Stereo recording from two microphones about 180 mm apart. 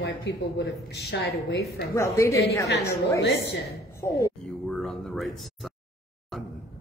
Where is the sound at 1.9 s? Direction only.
15° left (ahead or behind).